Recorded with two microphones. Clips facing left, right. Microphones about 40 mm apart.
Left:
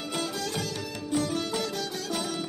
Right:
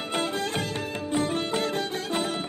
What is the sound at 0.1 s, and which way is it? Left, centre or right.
Music, right.